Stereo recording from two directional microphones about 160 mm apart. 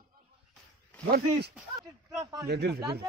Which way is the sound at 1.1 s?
90° right.